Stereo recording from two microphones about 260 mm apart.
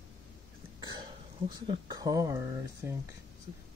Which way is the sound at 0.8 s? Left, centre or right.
Centre.